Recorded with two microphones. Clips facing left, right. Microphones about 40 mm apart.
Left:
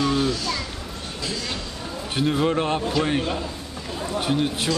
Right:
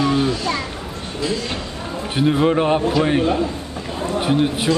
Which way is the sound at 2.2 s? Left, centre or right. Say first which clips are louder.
Right 5 dB; centre.